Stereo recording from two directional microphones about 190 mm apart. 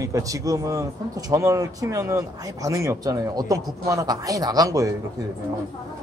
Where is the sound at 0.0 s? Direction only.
15° right (ahead or behind).